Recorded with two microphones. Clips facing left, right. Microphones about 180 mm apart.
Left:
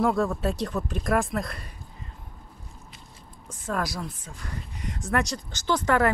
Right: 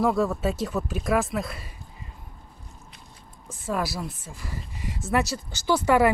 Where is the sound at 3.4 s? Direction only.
5° right (ahead or behind).